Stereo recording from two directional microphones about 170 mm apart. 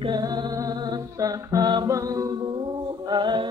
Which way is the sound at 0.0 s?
25° right (ahead or behind).